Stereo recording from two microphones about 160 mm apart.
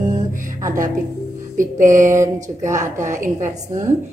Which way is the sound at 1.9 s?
20° right (ahead or behind).